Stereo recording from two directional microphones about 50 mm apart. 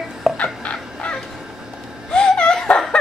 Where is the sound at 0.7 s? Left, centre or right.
Centre.